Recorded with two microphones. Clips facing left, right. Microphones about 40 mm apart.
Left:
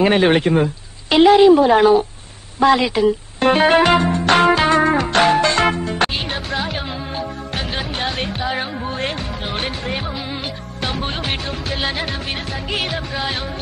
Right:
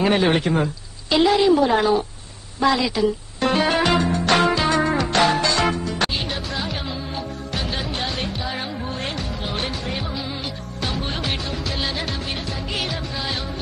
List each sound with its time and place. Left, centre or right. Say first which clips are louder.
0.0 s a woman's voice: left 4 dB; left
2.6 s music: left 5 dB; left